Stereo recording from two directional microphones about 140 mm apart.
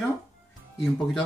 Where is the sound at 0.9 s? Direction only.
5° left (ahead or behind).